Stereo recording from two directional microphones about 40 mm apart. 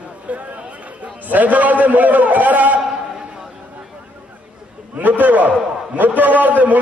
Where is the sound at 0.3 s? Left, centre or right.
Right.